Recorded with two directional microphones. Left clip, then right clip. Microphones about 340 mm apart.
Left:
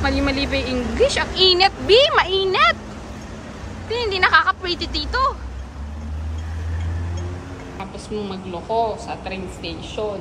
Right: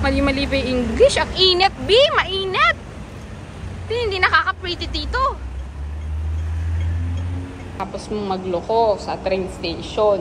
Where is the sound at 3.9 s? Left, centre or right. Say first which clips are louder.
Left 1 dB; centre.